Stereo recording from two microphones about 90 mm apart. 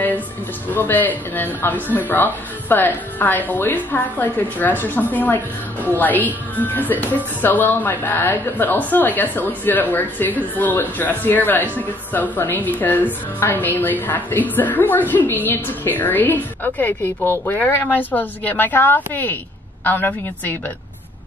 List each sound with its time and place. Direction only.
0.7 s a woman's voice: 20° left (ahead or behind)